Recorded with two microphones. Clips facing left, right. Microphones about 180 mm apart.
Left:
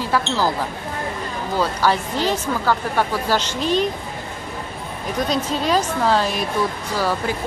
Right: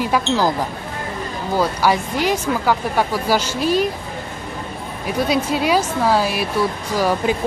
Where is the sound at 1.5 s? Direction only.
10° right (ahead or behind).